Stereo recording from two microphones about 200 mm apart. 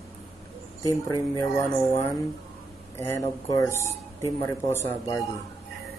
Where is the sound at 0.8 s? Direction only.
15° left (ahead or behind).